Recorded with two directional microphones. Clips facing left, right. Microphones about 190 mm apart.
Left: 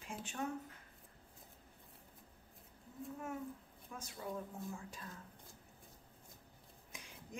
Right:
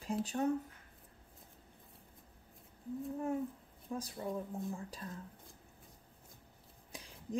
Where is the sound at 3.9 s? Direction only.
35° right (ahead or behind).